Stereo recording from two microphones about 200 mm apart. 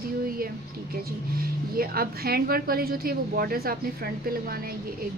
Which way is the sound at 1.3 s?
45° right (ahead or behind).